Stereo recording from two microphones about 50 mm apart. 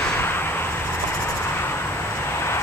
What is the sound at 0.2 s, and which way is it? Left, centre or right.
Vehicle, left.